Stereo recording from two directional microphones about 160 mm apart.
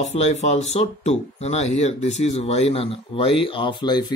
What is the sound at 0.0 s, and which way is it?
Speech, 45° left (ahead or behind).